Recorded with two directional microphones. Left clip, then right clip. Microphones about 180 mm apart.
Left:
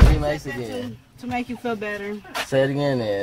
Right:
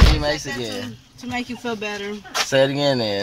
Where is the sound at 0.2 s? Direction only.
10° right (ahead or behind).